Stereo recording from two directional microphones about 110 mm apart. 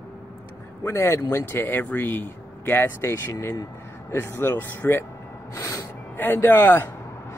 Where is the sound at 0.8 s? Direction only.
25° left (ahead or behind).